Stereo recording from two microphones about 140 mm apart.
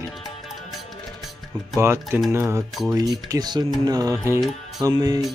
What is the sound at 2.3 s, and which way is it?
Music, 20° right (ahead or behind).